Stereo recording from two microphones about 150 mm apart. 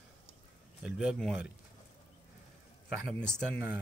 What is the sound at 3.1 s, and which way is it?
Speech, 5° left (ahead or behind).